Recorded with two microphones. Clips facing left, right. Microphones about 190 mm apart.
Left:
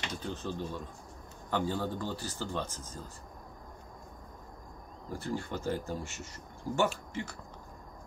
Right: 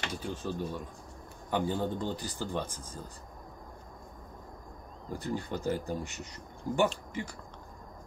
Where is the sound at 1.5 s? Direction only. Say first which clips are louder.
Right 2 dB; 15° right (ahead or behind).